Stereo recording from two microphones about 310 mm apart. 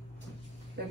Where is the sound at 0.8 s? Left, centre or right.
Right.